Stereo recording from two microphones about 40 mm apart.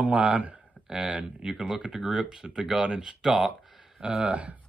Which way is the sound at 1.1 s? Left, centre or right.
Right.